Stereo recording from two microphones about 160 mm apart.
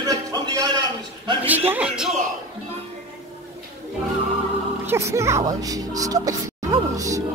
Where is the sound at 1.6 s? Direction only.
5° right (ahead or behind).